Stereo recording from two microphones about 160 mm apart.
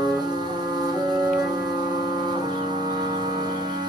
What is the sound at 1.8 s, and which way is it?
Wind instrument, 25° right (ahead or behind).